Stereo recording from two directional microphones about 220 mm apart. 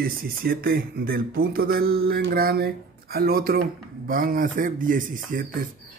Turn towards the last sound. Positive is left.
turn(degrees=-40)  # may be behind; listen again after turning